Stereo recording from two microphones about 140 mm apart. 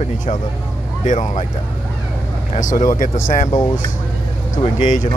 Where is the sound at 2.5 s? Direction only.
70° left (ahead or behind).